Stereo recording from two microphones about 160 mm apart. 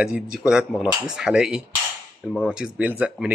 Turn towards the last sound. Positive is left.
turn(degrees=-10)  # may be behind; listen again after turning